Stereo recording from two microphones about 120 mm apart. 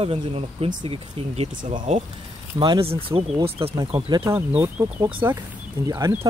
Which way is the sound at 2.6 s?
45° right (ahead or behind).